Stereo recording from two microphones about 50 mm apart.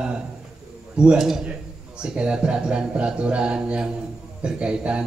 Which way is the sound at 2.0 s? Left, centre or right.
Centre.